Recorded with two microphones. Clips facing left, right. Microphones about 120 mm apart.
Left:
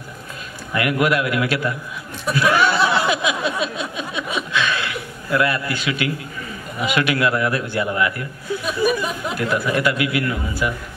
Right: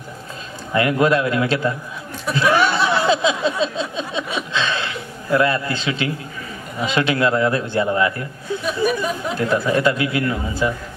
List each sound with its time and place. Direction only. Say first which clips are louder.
0.7 s speech: right 3 dB; 30° right (ahead or behind)
2.3 s a sound: even; 25° right (ahead or behind)
4.4 s chuckle: left 2 dB; 25° right (ahead or behind)
6.8 s speech: right 1 dB; 25° right (ahead or behind)